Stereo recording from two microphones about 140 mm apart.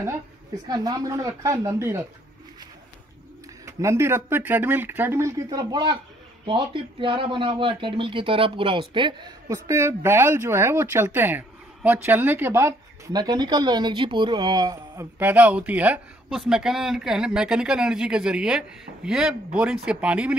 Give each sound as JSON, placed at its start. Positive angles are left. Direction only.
{"t": 0.7, "sound": "speech", "side_deg": -25}
{"t": 3.6, "sound": "speech", "side_deg": -20}
{"t": 9.5, "sound": "speech", "side_deg": -20}
{"t": 15.1, "sound": "speech", "side_deg": -10}